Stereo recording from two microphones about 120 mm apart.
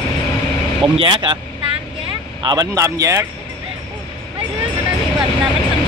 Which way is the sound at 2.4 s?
30° right (ahead or behind).